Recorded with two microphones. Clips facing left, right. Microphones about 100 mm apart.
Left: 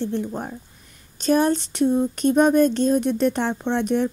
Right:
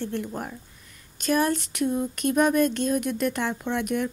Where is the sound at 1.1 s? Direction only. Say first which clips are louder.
Left 5 dB; 30° left (ahead or behind).